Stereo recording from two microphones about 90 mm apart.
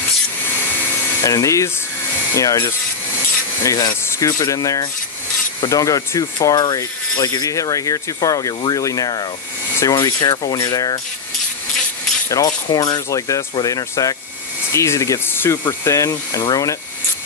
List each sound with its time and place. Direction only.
1.2 s speech: 35° left (ahead or behind)
3.6 s speech: 45° left (ahead or behind)
4.0 s a sound: 30° left (ahead or behind)
4.3 s speech: 40° left (ahead or behind)
12.3 s speech: 45° left (ahead or behind)
15.2 s speech: 25° left (ahead or behind)
15.8 s speech: 35° left (ahead or behind)